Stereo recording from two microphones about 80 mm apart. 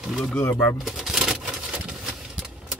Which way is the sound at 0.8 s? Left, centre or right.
Centre.